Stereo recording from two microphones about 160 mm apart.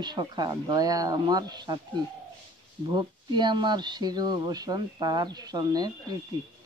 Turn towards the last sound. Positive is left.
turn(degrees=-25)  # may be behind; listen again after turning